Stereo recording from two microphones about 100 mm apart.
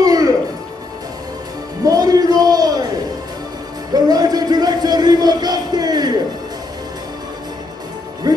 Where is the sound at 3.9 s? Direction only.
40° right (ahead or behind).